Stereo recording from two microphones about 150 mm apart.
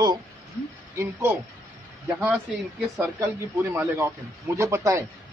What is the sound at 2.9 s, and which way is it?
A man's voice, 20° right (ahead or behind).